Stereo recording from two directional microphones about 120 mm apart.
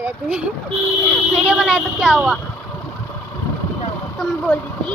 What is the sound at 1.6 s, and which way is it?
Speech, 5° right (ahead or behind).